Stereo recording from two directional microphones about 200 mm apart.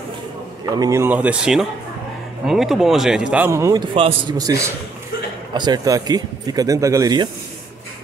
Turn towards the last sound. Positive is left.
turn(degrees=-20)  # may be behind; listen again after turning